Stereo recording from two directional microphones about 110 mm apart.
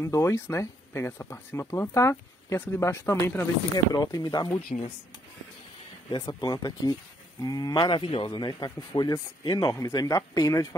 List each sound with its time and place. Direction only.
0.0 s speech: 25° left (ahead or behind)
3.7 s speech: 35° left (ahead or behind)
4.6 s speech: 65° left (ahead or behind)
6.0 s speech: 35° left (ahead or behind)
7.9 s speech: 55° left (ahead or behind); by 10.8 s 30° left (ahead or behind)